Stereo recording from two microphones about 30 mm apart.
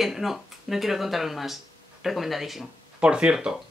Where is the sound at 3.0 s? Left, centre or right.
Right.